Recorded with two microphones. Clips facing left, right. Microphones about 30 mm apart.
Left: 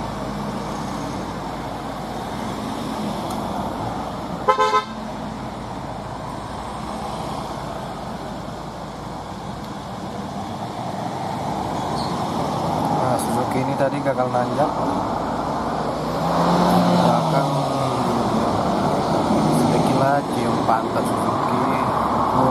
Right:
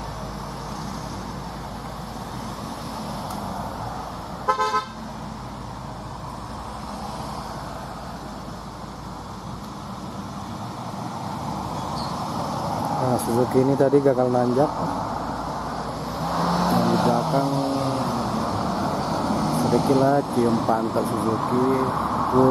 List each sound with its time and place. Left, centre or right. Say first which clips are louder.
4.5 s car: left 5 dB; left
11.5 s vehicle: left 5 dB; left
20.7 s speech: left 3 dB; left